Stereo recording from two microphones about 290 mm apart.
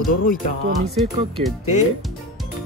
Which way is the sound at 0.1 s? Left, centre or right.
Left.